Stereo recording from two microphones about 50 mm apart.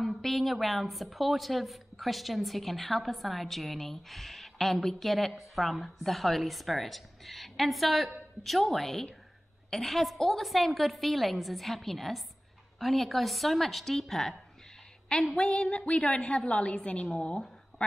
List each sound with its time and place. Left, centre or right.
0.0 s a woman's voice: centre
15.5 s a woman's voice: left